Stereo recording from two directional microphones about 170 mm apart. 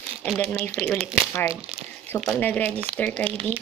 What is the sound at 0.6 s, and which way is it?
Speech, 10° left (ahead or behind).